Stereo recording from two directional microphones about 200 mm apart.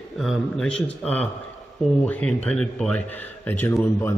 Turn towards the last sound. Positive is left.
turn(degrees=10)  # may be behind; listen again after turning